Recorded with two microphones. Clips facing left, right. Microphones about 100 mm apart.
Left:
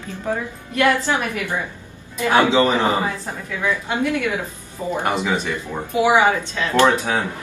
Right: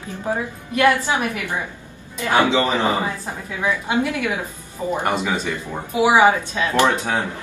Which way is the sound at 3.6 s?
15° right (ahead or behind).